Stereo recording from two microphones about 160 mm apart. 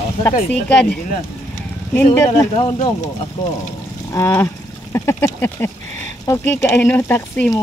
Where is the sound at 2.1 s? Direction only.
20° left (ahead or behind).